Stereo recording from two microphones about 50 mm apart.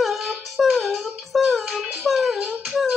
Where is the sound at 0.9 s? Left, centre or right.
Centre.